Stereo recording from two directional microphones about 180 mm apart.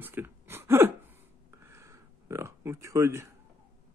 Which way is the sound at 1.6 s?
15° right (ahead or behind).